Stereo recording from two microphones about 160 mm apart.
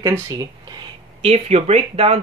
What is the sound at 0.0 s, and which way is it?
Speech, 20° right (ahead or behind).